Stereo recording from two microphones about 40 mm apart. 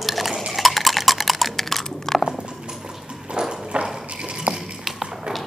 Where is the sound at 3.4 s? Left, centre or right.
Right.